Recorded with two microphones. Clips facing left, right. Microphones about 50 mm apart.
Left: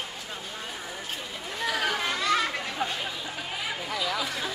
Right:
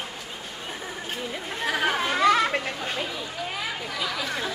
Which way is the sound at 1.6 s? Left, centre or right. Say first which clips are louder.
Right 3 dB; right.